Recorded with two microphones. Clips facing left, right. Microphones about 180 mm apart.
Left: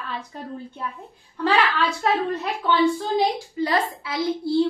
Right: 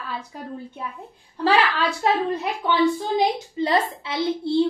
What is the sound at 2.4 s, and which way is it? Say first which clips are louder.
A woman's voice: even; 15° right (ahead or behind).